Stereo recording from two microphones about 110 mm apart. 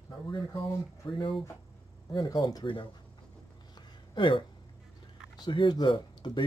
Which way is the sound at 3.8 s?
50° left (ahead or behind).